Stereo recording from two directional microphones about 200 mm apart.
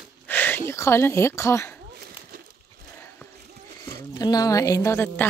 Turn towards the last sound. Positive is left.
turn(degrees=10)  # may be behind; listen again after turning